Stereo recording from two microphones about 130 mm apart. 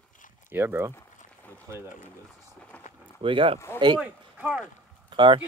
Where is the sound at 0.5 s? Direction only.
15° right (ahead or behind).